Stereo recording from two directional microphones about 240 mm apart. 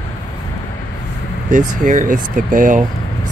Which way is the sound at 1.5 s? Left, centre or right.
Right.